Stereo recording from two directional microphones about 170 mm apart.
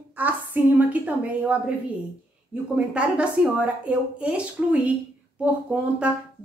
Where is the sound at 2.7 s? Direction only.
5° right (ahead or behind).